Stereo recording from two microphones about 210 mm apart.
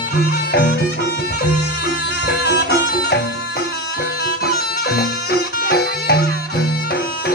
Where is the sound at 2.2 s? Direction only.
50° left (ahead or behind).